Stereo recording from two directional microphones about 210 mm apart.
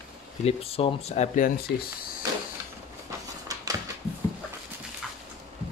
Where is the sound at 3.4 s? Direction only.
15° right (ahead or behind).